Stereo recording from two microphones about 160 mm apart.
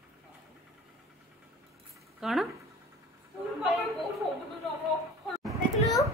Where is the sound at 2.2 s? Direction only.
Centre (ahead or behind).